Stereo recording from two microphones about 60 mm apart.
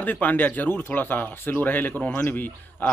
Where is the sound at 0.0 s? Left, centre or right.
Left.